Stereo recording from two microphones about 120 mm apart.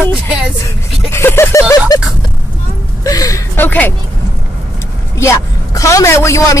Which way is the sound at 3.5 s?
15° left (ahead or behind).